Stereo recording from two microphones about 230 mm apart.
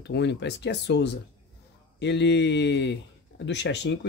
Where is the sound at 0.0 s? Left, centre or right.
Left.